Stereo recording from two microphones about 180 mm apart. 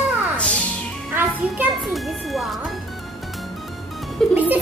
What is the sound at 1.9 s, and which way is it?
Music, centre (ahead or behind).